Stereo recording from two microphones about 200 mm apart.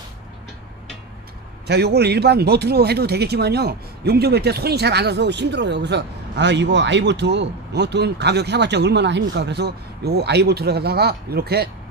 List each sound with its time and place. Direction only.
1.7 s a man's voice: 55° right (ahead or behind)